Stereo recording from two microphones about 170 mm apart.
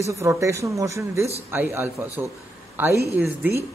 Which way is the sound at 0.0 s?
15° right (ahead or behind).